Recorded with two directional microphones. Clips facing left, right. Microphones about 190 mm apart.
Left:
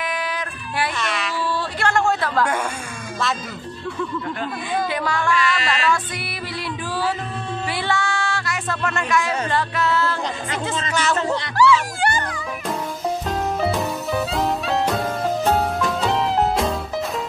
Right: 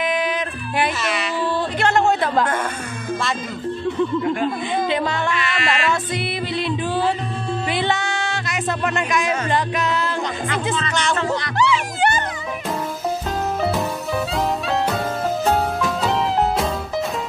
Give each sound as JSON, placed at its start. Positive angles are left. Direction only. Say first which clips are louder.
{"t": 0.0, "sound": "music", "louder": "right 5 dB", "side_deg": -20}
{"t": 1.0, "sound": "speech", "louder": "right 2 dB", "side_deg": 0}
{"t": 1.8, "sound": "music", "louder": "right 2 dB", "side_deg": -20}
{"t": 4.8, "sound": "music", "louder": "right 1 dB", "side_deg": -20}
{"t": 10.9, "sound": "music", "louder": "even", "side_deg": 5}
{"t": 11.5, "sound": "speech", "louder": "left 7 dB", "side_deg": -20}
{"t": 13.6, "sound": "music", "louder": "even", "side_deg": 0}